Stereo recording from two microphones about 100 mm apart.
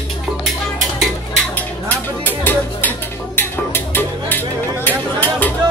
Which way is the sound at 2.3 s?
20° left (ahead or behind).